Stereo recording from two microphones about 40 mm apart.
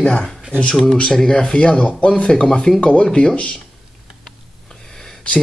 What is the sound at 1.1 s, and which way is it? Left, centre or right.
Speech, centre.